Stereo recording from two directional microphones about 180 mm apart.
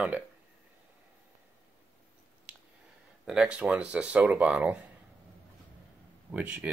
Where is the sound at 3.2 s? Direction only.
5° right (ahead or behind).